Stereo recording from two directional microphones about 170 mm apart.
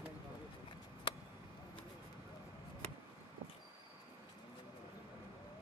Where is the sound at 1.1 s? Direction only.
30° left (ahead or behind).